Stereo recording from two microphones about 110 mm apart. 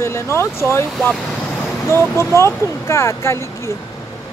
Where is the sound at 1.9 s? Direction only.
25° left (ahead or behind).